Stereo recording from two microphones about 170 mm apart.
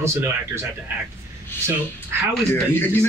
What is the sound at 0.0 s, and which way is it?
Speech, 15° right (ahead or behind).